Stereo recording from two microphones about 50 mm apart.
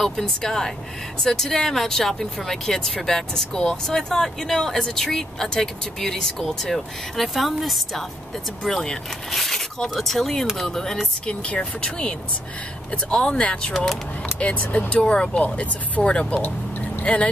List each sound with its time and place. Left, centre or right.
0.0 s speech: centre; by 15.0 s left
15.0 s speech: centre
16.3 s vehicle: left
17.0 s speech: left